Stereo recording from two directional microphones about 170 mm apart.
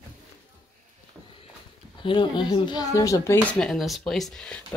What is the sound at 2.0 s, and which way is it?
A child's voice, 30° left (ahead or behind).